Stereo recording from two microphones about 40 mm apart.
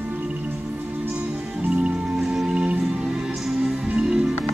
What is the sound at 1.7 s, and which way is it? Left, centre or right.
Music, right.